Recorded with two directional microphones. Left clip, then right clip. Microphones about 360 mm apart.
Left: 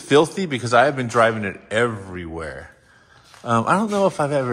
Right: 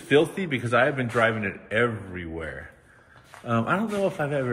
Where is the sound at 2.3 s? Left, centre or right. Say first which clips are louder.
Left 4 dB; left.